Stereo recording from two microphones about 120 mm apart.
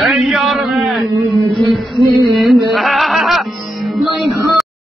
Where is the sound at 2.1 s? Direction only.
Centre (ahead or behind).